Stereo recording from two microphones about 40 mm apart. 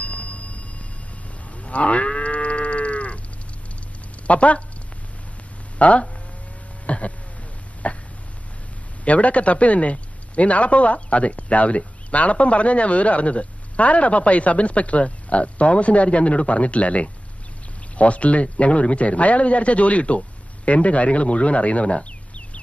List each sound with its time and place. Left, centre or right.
0.0 s a sound: left
1.6 s moo: left
4.3 s a man's voice: left
5.8 s speech: left
6.9 s a sound: left
9.0 s a man's voice: left